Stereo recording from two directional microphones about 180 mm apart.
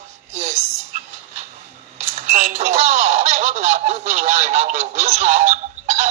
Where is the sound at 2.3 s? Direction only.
45° right (ahead or behind).